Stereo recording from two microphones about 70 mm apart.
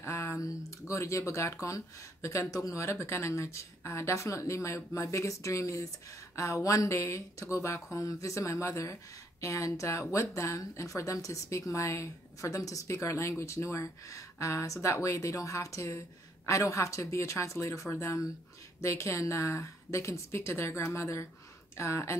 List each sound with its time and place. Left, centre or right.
0.0 s speech: left